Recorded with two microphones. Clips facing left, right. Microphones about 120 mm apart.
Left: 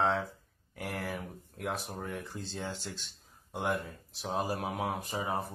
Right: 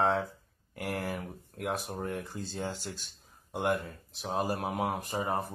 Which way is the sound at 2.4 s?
45° right (ahead or behind).